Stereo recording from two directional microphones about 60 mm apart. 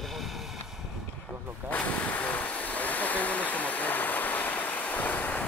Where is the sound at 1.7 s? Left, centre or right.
Left.